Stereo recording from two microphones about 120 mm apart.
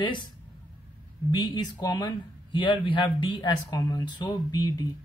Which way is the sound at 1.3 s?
40° left (ahead or behind).